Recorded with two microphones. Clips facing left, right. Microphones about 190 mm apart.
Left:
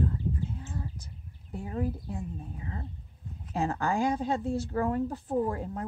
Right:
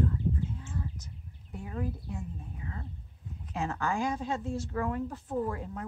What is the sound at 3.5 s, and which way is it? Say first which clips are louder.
A woman's voice: left 3 dB; 35° left (ahead or behind).